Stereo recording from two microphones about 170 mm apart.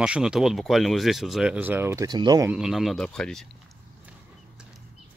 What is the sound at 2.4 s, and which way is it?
Speech, 5° right (ahead or behind).